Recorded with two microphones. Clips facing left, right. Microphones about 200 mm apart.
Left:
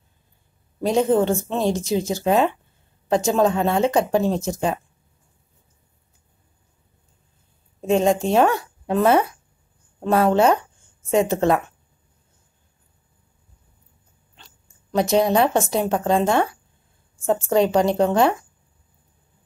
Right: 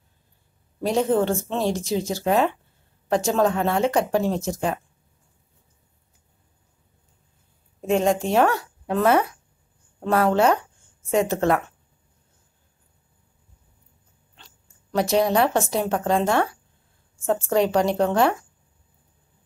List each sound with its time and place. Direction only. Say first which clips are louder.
0.7 s speech: left 2 dB; 15° left (ahead or behind)
7.8 s a woman's voice: left 2 dB; 25° left (ahead or behind)
15.0 s speech: left 2 dB; 20° left (ahead or behind)